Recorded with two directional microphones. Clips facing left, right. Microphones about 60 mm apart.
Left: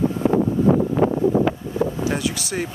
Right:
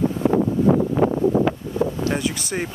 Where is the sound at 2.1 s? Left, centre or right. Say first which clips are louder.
Even; centre.